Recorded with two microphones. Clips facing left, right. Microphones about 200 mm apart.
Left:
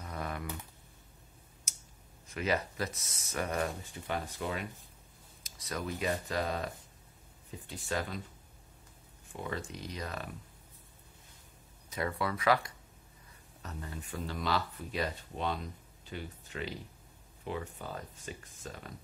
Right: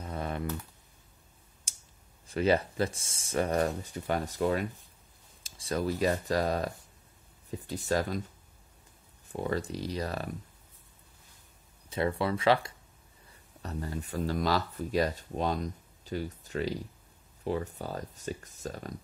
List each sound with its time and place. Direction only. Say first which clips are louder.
0.0 s typing: right 5 dB; 25° right (ahead or behind)
2.2 s speech: right 7 dB; 30° right (ahead or behind)
5.4 s speech: right 7 dB; 30° right (ahead or behind)
9.3 s speech: right 7 dB; 40° right (ahead or behind)
11.9 s speech: right 5 dB; 30° right (ahead or behind)